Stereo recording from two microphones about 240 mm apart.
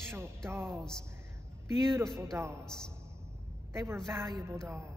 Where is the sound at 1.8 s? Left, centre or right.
Centre.